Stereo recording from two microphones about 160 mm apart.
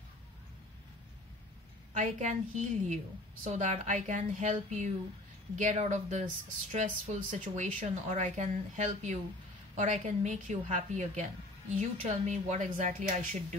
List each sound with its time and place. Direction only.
2.0 s speech: 50° right (ahead or behind)